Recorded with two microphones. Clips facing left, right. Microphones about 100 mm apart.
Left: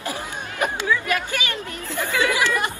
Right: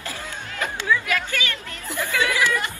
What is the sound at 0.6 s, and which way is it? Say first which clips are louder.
Chatter: left 1 dB; 20° left (ahead or behind).